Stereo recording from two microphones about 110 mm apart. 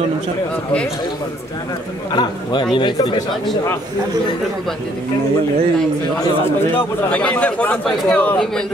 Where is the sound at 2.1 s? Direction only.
45° left (ahead or behind).